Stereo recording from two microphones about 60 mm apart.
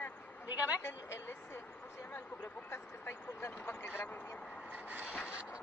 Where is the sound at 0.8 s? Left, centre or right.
Left.